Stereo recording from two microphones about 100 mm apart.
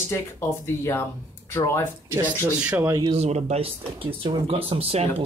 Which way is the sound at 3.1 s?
90° right.